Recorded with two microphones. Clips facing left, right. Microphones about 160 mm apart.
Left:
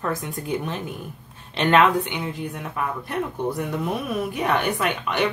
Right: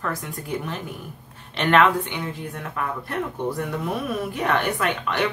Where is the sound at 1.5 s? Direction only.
20° left (ahead or behind).